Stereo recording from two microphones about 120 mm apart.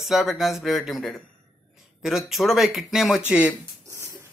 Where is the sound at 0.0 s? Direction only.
5° right (ahead or behind).